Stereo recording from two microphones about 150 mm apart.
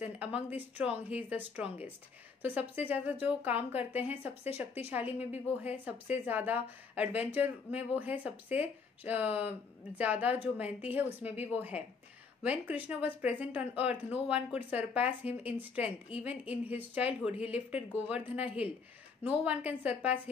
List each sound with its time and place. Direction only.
0.2 s speech: 10° right (ahead or behind)
4.5 s speech: 45° left (ahead or behind)
4.9 s speech: 10° right (ahead or behind)